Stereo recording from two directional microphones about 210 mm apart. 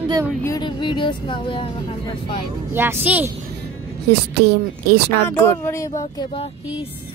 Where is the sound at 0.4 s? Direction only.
20° left (ahead or behind).